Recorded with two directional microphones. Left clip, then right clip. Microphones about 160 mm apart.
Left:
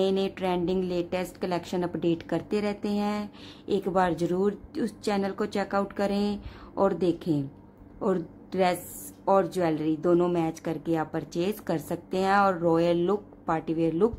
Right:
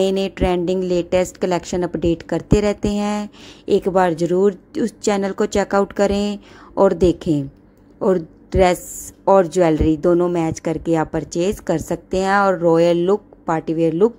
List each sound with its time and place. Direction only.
0.0 s a woman's voice: 35° right (ahead or behind)